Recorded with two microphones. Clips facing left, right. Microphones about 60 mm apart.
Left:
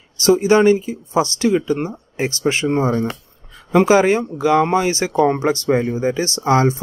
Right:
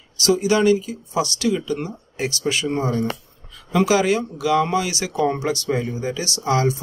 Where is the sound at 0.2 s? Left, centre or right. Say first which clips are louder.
Left 5 dB; left.